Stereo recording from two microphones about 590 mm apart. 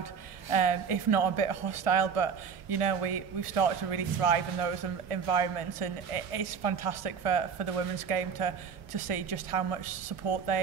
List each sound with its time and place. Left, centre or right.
0.5 s speech: right